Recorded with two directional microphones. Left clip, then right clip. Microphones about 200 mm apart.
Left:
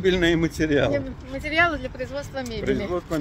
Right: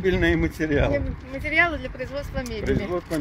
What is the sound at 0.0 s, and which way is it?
Speech, centre (ahead or behind).